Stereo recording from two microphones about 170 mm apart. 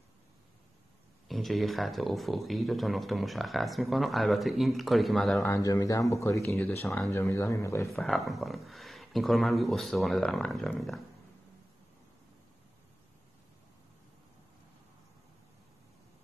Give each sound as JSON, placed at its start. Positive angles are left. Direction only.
{"t": 1.3, "sound": "speech", "side_deg": 0}
{"t": 5.5, "sound": "speech", "side_deg": 20}
{"t": 7.9, "sound": "speech", "side_deg": 0}